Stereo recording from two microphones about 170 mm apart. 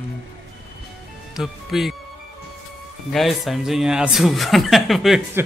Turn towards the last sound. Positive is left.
turn(degrees=0)  # may be behind; listen again after turning